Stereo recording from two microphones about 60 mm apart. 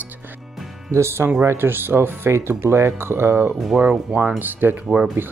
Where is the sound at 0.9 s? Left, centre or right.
Right.